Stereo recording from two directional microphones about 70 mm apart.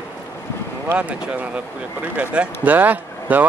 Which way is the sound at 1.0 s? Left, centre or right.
Right.